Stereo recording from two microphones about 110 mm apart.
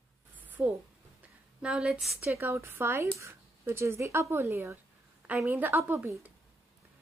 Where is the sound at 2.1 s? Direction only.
20° right (ahead or behind).